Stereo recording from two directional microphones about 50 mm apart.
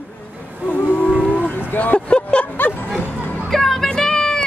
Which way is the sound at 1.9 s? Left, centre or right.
Left.